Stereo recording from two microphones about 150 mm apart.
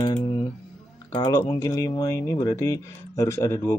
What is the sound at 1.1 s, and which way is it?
Speech, 25° left (ahead or behind).